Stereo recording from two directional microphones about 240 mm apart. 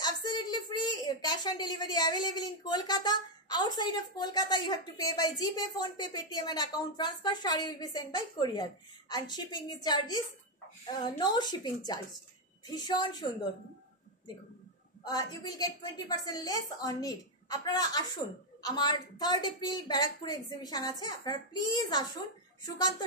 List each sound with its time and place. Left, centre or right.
0.0 s a woman's voice: centre
15.0 s a woman's voice: centre